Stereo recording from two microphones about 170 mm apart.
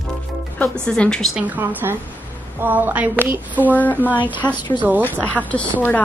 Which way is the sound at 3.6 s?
10° left (ahead or behind).